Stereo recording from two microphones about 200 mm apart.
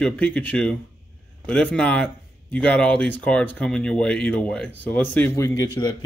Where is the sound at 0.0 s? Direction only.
5° left (ahead or behind).